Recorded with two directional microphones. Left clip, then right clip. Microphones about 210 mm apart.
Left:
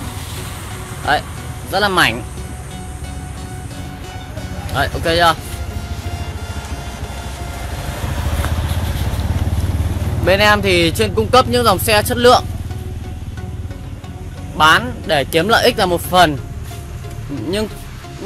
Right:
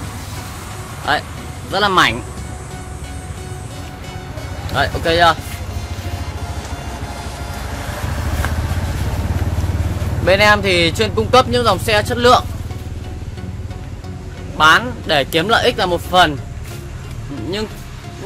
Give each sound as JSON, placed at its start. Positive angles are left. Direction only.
{"t": 1.1, "sound": "speech", "side_deg": 10}
{"t": 4.7, "sound": "speech", "side_deg": 10}
{"t": 10.2, "sound": "speech", "side_deg": 15}
{"t": 14.6, "sound": "speech", "side_deg": 15}
{"t": 15.0, "sound": "speech", "side_deg": 5}
{"t": 15.4, "sound": "speech", "side_deg": 30}